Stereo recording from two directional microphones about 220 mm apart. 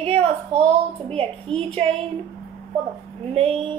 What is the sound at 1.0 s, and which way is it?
Speech, 25° right (ahead or behind).